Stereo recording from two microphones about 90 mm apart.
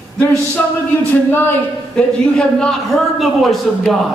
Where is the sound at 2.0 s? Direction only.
10° left (ahead or behind).